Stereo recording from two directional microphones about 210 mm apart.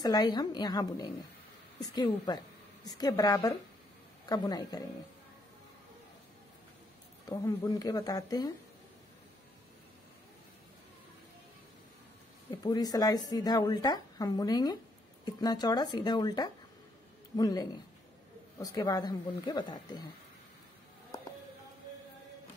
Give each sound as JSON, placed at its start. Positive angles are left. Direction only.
{"t": 0.0, "sound": "a woman's voice", "side_deg": 20}
{"t": 7.2, "sound": "a woman's voice", "side_deg": 15}
{"t": 12.4, "sound": "a woman's voice", "side_deg": 20}